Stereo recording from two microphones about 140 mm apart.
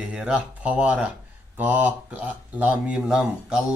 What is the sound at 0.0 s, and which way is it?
Speech, 5° right (ahead or behind).